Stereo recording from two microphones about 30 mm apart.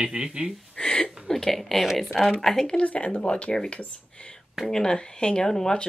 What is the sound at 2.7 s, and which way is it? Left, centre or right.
Speech, left.